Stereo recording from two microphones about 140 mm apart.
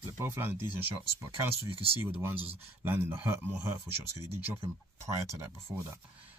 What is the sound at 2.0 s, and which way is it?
Speech, 15° right (ahead or behind).